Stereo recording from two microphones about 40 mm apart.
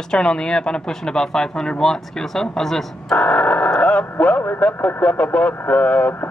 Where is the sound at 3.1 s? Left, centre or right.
Left.